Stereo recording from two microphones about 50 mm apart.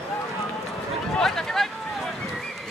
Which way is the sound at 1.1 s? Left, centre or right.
Centre.